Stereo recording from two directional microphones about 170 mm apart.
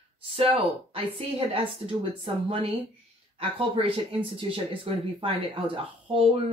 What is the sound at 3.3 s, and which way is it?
Speech, 35° right (ahead or behind).